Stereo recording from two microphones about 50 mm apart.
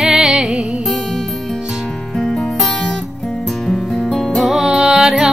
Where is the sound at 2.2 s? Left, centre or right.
Centre.